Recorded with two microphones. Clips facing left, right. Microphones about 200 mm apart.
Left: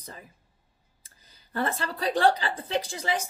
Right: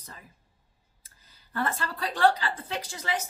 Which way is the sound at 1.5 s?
25° left (ahead or behind).